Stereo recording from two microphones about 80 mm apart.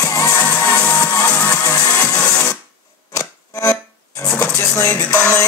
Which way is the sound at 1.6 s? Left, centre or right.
Left.